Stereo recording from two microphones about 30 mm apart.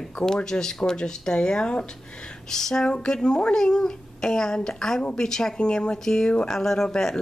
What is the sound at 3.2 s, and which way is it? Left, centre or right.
A woman's voice, left.